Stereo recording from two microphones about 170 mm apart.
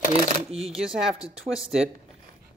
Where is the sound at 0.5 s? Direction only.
5° right (ahead or behind).